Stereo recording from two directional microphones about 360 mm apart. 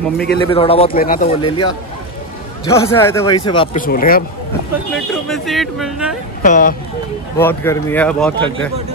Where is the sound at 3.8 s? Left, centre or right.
Left.